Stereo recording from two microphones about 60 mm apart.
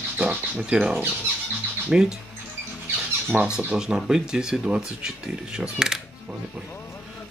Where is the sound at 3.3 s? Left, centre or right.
Right.